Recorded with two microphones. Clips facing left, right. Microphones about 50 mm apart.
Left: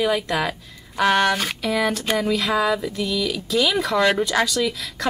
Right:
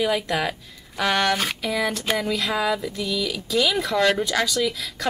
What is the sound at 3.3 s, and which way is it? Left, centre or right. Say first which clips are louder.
Speech: even; centre.